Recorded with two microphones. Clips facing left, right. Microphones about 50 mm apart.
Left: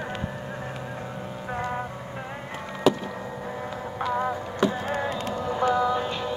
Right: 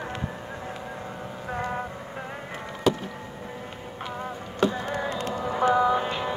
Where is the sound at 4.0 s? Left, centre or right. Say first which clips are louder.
Left 8 dB; left.